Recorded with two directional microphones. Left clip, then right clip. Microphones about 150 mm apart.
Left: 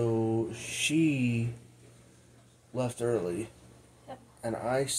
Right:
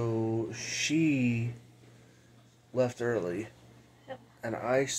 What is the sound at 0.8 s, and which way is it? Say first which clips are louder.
Speech: left 1 dB; 50° right (ahead or behind).